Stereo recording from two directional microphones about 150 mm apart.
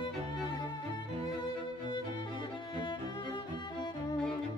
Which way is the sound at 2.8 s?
30° left (ahead or behind).